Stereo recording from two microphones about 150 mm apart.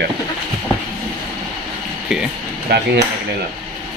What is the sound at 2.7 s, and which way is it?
Hammer, 90° right.